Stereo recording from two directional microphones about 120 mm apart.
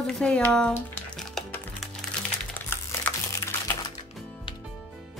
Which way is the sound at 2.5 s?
15° left (ahead or behind).